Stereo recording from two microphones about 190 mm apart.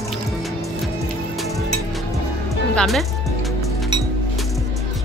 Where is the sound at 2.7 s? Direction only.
Centre (ahead or behind).